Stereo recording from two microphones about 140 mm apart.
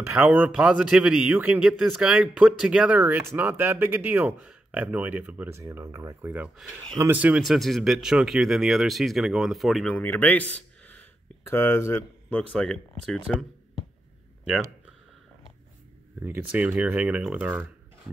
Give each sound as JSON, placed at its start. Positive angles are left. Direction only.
{"t": 0.0, "sound": "a man's voice", "side_deg": -15}
{"t": 7.0, "sound": "speech", "side_deg": -10}
{"t": 9.9, "sound": "speech", "side_deg": 10}
{"t": 16.2, "sound": "a man's voice", "side_deg": -15}